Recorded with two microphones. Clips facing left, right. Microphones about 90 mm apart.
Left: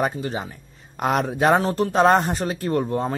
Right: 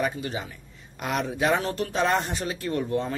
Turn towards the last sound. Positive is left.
turn(degrees=40)  # may be behind; listen again after turning